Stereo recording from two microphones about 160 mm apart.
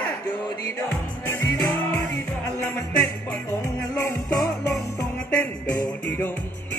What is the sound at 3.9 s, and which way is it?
Music, 20° left (ahead or behind).